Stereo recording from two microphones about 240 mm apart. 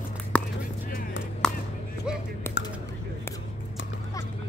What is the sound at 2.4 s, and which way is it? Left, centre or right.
Computer keyboard, centre.